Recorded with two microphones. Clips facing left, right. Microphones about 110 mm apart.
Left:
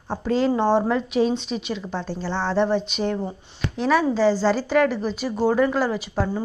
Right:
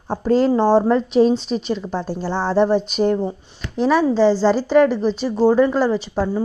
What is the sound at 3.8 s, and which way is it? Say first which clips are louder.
A woman's voice: right 4 dB; centre (ahead or behind).